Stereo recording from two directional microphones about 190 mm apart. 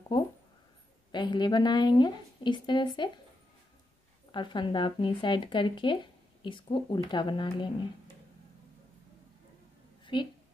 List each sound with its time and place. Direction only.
1.1 s a woman's voice: 25° left (ahead or behind)
4.3 s a woman's voice: 25° left (ahead or behind)
10.1 s a woman's voice: 25° left (ahead or behind)